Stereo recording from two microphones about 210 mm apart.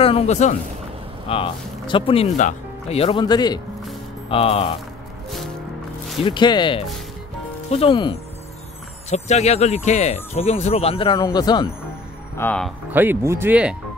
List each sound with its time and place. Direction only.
0.0 s speech: 30° left (ahead or behind)
6.2 s speech: 20° left (ahead or behind)
12.4 s speech: 5° left (ahead or behind)
12.9 s speech: 10° right (ahead or behind)